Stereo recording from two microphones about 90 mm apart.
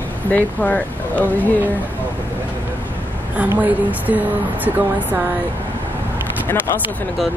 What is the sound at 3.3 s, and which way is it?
Speech, 20° right (ahead or behind).